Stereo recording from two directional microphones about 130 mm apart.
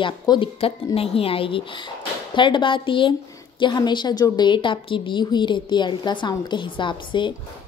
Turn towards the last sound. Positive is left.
turn(degrees=40)  # may be behind; listen again after turning